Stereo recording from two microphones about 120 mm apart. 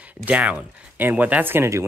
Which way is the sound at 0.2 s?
10° right (ahead or behind).